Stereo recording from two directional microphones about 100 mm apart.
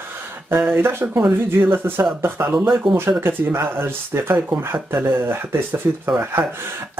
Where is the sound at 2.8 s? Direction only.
60° right (ahead or behind).